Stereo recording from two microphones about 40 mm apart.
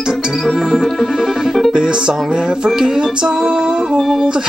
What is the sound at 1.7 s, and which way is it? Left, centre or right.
Music, right.